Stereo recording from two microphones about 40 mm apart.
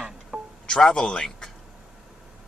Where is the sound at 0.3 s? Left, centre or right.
Right.